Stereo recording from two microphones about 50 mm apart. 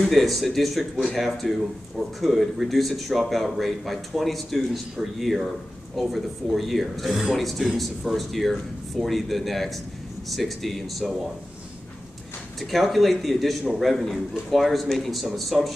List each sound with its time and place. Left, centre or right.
0.1 s speech: centre
12.5 s speech: centre